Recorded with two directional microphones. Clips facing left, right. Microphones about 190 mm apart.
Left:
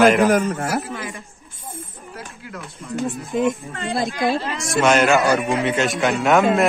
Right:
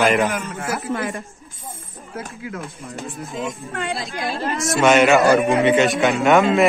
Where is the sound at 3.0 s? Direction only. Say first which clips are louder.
Left 8 dB; 55° left (ahead or behind).